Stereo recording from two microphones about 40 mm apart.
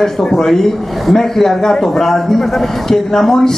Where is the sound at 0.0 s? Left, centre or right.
Centre.